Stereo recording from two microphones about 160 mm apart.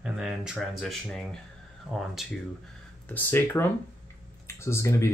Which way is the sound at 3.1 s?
15° left (ahead or behind).